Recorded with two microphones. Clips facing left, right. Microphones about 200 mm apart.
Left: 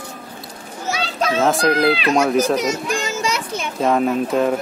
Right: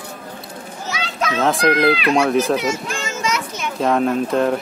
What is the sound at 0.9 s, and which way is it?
Children playing, 30° left (ahead or behind).